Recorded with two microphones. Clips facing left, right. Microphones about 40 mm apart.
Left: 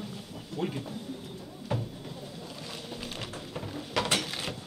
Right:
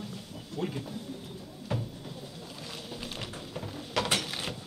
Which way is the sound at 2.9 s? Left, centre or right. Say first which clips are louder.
Left 1 dB; centre.